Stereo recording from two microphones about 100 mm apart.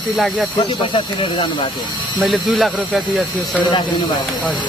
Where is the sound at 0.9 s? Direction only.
60° left (ahead or behind).